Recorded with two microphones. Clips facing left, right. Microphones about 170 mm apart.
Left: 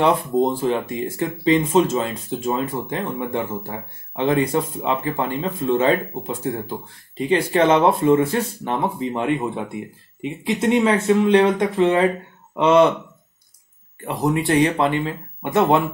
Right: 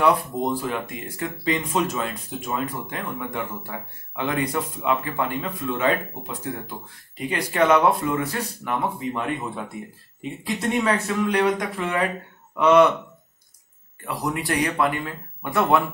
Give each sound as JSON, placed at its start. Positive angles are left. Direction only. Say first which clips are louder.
{"t": 0.0, "sound": "speech", "louder": "left 3 dB", "side_deg": 25}
{"t": 14.0, "sound": "speech", "louder": "left 6 dB", "side_deg": 25}